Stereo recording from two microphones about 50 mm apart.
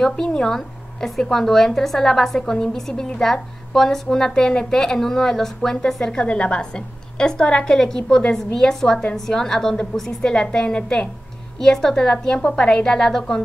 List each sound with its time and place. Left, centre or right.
0.0 s a woman's voice: centre